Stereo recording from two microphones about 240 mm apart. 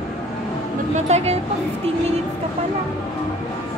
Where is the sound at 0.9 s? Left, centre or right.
Right.